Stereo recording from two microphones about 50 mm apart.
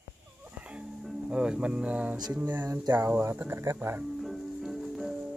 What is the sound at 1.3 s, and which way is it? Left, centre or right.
Speech, centre.